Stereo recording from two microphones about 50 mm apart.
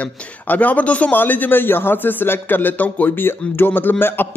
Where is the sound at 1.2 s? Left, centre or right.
Left.